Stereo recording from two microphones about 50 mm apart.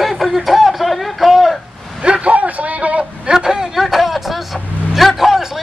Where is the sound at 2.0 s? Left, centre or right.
Right.